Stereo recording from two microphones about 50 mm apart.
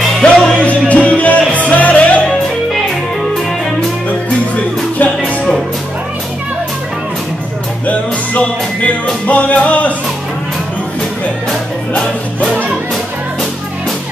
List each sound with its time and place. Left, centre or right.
0.2 s music: left
5.2 s music: centre
7.8 s music: left
11.9 s music: centre